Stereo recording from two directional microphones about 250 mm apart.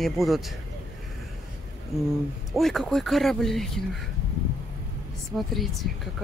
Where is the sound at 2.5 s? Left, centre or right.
Centre.